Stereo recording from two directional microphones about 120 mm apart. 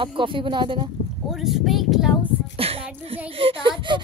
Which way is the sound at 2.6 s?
55° right (ahead or behind).